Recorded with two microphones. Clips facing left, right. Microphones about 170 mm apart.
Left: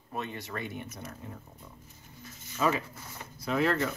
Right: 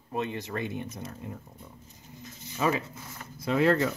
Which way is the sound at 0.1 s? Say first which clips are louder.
Right 5 dB; 20° right (ahead or behind).